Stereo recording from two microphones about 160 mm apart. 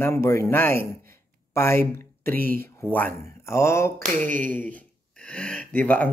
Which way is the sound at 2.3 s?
65° right (ahead or behind).